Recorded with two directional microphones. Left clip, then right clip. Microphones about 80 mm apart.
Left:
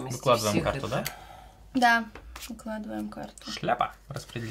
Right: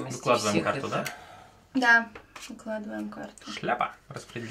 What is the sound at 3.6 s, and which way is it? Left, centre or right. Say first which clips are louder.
Speech: left 1 dB; left.